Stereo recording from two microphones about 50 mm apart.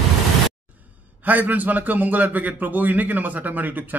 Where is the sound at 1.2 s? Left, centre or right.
Right.